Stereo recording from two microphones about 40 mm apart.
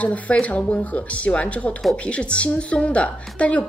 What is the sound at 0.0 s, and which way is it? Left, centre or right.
A woman's voice, left.